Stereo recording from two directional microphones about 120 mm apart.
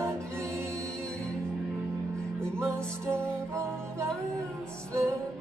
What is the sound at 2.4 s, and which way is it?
Music, 25° right (ahead or behind).